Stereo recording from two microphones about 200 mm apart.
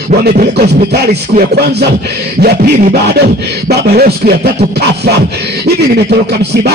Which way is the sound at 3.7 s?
50° right (ahead or behind).